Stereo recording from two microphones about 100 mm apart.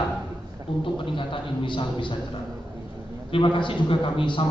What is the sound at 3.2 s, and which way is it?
A man's voice, 55° left (ahead or behind).